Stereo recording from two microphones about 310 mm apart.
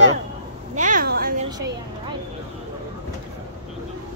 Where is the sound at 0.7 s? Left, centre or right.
Right.